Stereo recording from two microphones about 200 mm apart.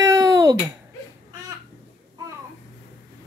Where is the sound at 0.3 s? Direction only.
20° right (ahead or behind).